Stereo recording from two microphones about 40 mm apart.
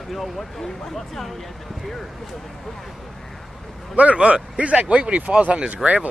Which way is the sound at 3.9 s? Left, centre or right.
Right.